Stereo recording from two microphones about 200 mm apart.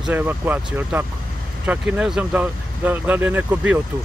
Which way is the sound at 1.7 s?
5° right (ahead or behind).